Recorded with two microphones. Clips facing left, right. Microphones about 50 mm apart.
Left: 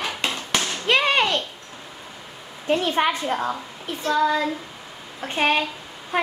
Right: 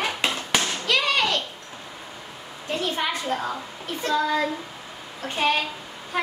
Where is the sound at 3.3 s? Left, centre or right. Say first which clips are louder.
Left 2 dB; centre.